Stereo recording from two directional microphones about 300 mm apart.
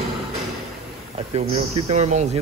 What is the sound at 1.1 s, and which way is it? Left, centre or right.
Speech, centre.